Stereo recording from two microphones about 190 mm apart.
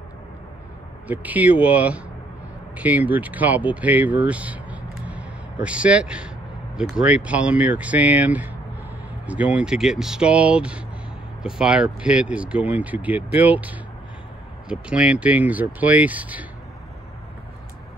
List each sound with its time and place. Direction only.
1.0 s speech: 10° right (ahead or behind)